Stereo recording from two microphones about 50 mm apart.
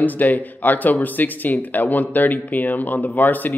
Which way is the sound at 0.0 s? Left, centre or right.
Left.